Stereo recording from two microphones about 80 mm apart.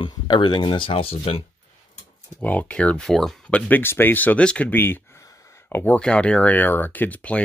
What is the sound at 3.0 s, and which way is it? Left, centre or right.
Speech, centre.